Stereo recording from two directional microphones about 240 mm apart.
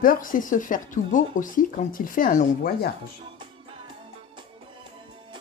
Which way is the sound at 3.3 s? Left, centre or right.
Centre.